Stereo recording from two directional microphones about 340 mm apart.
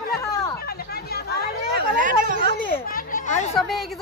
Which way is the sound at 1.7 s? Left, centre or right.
Right.